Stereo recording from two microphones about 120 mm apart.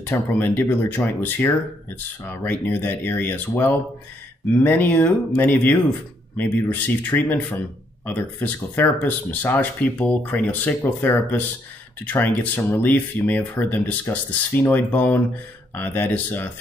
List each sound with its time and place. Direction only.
0.0 s speech: 15° left (ahead or behind)